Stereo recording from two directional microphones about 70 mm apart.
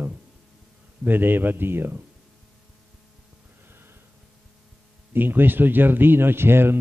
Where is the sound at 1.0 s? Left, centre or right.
Right.